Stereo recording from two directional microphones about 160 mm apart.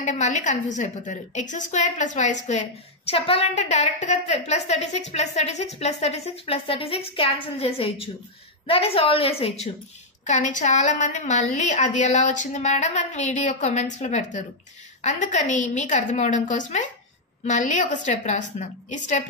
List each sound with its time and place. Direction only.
0.0 s a woman's voice: 45° left (ahead or behind)
10.2 s a woman's voice: 50° left (ahead or behind)